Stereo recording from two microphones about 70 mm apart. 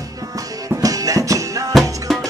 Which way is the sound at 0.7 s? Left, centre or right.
Right.